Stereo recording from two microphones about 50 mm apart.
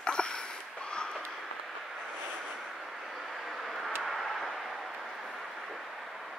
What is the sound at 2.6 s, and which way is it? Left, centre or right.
Vehicle, centre.